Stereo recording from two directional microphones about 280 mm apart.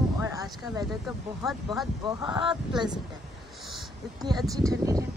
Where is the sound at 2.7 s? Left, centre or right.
Centre.